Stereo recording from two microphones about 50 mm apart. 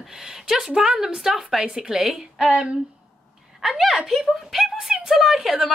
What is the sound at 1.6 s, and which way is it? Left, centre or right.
Speech, centre.